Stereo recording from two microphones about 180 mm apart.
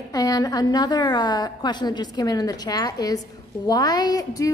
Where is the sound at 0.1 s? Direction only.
20° left (ahead or behind).